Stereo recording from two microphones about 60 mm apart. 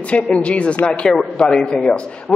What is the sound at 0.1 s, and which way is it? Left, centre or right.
A man's voice, centre.